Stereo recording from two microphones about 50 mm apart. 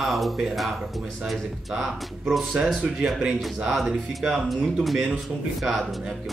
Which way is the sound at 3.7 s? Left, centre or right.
Centre.